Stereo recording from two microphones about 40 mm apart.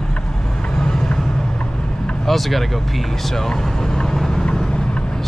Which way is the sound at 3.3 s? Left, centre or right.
Centre.